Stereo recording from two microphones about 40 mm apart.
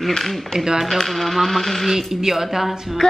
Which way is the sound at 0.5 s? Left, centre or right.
Centre.